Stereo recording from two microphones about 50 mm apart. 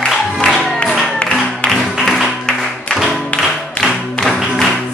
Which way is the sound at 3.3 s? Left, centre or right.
Left.